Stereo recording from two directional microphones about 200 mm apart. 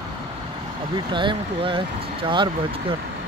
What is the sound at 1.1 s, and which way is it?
Speech, 25° right (ahead or behind).